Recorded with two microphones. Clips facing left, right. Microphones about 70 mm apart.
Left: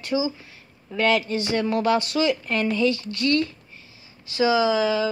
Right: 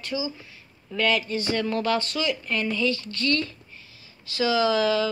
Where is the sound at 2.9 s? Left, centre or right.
Right.